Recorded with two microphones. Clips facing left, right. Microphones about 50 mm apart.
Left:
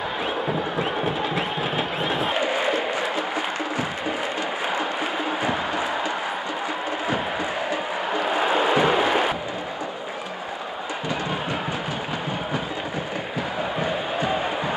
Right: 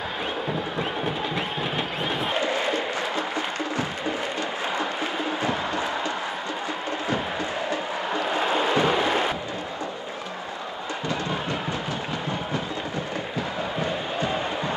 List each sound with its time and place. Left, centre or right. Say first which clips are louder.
0.5 s music: left 3 dB; centre
2.3 s music: left 2 dB; centre
5.4 s a sound: left 1 dB; centre
7.7 s music: left 2 dB; centre
13.7 s crowd: left 2 dB; centre